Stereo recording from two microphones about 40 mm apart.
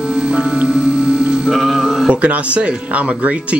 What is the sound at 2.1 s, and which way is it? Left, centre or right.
Speech, right.